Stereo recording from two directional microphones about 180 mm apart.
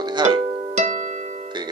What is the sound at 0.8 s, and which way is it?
Music, 40° right (ahead or behind).